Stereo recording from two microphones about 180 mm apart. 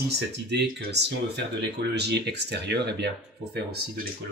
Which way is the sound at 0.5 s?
70° right (ahead or behind).